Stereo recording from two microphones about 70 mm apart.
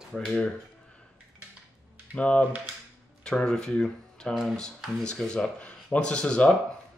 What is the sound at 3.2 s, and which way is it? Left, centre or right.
Speech, centre.